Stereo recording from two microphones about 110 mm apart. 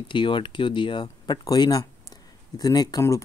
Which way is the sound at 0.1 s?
45° left (ahead or behind).